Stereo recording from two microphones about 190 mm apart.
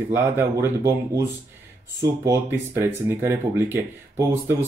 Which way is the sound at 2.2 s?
10° right (ahead or behind).